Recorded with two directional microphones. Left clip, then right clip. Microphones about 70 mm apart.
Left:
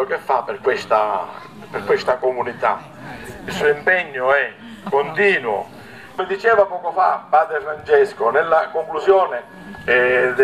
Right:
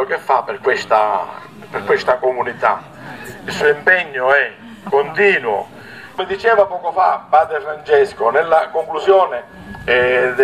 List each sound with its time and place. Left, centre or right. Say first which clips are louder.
0.0 s a man's voice: right 3 dB; right